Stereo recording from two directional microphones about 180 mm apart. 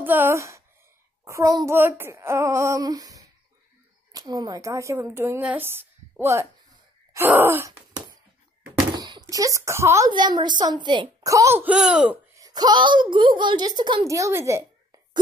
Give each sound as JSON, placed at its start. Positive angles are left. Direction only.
{"t": 0.0, "sound": "a woman's voice", "side_deg": -10}
{"t": 7.2, "sound": "wail", "side_deg": -10}
{"t": 8.9, "sound": "a woman's voice", "side_deg": -25}
{"t": 12.4, "sound": "a woman's voice", "side_deg": -20}